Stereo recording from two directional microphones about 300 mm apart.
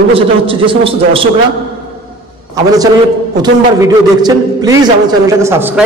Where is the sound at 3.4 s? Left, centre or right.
Centre.